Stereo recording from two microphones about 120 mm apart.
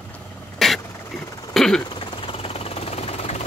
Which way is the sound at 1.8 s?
40° left (ahead or behind).